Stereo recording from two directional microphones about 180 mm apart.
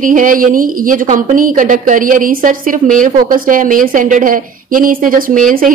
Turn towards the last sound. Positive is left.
turn(degrees=-50)  # may be behind; listen again after turning